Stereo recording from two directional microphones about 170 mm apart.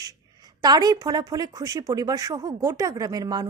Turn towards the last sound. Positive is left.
turn(degrees=-25)  # may be behind; listen again after turning